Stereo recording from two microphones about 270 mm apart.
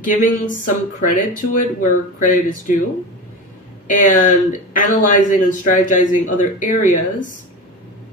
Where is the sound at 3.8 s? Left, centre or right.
Left.